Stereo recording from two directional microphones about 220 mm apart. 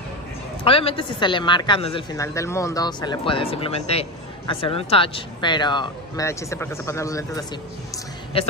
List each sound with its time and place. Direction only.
0.7 s speech: 25° left (ahead or behind)
2.1 s speech: 15° left (ahead or behind)